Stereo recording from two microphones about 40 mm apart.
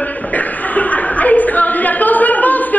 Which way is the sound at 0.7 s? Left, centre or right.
Left.